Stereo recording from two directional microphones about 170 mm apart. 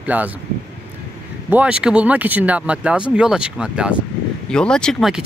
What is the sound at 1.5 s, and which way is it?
Speech, 5° right (ahead or behind).